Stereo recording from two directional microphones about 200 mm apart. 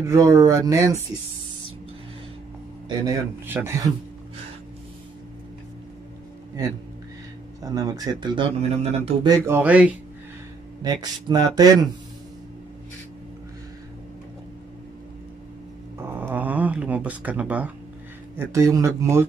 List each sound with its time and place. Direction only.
0.0 s speech: 15° right (ahead or behind)
2.9 s a man's voice: 20° right (ahead or behind)
7.6 s speech: 15° right (ahead or behind)
9.3 s speech: 10° right (ahead or behind)
10.8 s speech: 20° right (ahead or behind)
16.0 s a sound: 10° right (ahead or behind)
18.4 s speech: 15° right (ahead or behind)